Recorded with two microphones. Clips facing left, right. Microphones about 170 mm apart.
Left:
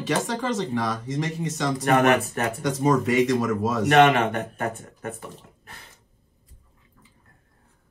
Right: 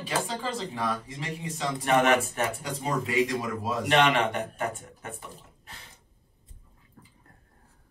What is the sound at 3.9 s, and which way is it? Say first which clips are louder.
Speech: left 6 dB; 45° left (ahead or behind).